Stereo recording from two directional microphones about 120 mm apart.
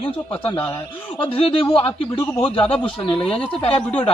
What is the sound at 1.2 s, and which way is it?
Speech, 50° left (ahead or behind).